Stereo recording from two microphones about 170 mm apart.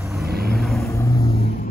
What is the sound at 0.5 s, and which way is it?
Vehicle, centre (ahead or behind).